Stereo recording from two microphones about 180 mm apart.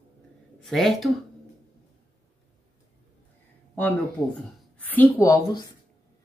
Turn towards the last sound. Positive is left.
turn(degrees=20)  # may be behind; listen again after turning